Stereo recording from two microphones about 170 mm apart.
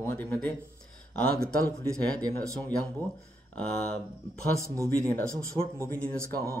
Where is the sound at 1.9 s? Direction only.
5° left (ahead or behind).